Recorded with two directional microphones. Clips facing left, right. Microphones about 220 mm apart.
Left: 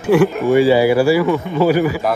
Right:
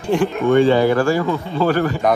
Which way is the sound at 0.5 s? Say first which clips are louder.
Even; 10° left (ahead or behind).